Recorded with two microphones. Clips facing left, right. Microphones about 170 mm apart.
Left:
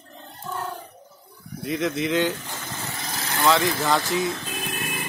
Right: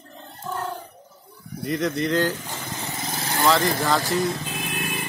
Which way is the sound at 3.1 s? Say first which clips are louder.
Right 2 dB; 25° right (ahead or behind).